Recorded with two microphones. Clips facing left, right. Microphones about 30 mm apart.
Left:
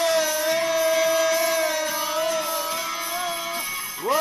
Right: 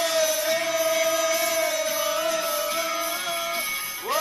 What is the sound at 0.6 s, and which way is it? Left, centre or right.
Music, left.